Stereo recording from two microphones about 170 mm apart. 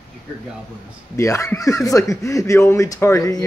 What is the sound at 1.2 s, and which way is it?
Speech, 15° left (ahead or behind).